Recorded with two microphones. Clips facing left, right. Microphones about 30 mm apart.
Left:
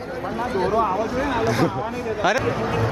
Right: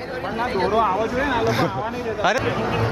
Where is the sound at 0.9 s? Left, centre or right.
Centre.